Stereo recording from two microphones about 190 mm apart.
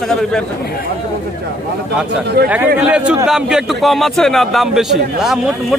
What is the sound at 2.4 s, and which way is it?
Speech, 55° right (ahead or behind).